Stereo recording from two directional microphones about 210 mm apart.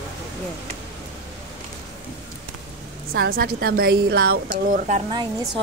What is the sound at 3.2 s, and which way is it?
A woman's voice, 45° right (ahead or behind).